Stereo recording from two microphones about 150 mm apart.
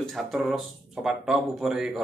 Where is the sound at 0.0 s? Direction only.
Centre (ahead or behind).